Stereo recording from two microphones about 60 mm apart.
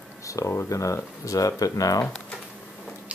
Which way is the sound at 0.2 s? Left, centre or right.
Left.